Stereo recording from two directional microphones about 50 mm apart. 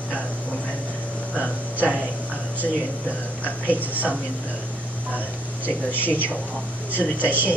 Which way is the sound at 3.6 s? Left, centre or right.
Right.